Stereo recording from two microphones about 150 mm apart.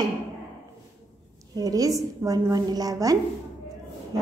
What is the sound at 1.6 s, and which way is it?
A woman's voice, 25° right (ahead or behind).